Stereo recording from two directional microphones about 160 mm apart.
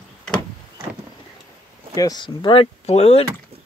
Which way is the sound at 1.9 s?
25° left (ahead or behind).